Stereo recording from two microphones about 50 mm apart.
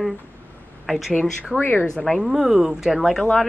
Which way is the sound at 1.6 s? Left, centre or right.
Left.